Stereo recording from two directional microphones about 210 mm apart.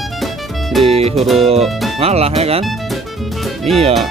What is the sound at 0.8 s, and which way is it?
Speech, 30° right (ahead or behind).